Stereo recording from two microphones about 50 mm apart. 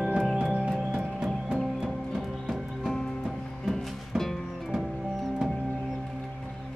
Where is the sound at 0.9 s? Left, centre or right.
Centre.